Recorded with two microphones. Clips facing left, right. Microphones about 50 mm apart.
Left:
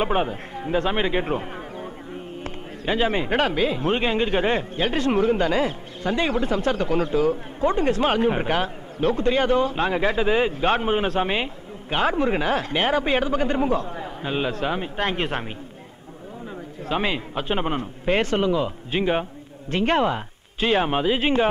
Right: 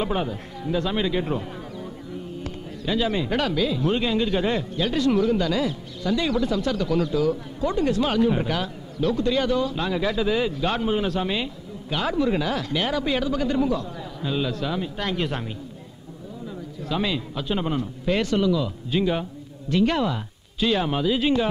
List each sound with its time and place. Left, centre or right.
0.0 s a man's voice: left
16.9 s a man's voice: left